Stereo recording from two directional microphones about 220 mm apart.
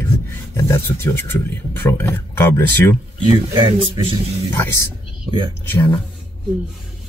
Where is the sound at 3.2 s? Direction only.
20° right (ahead or behind).